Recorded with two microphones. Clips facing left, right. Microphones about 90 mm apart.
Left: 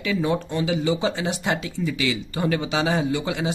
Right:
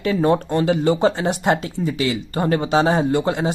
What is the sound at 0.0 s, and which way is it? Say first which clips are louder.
Speech: right 6 dB; 45° right (ahead or behind).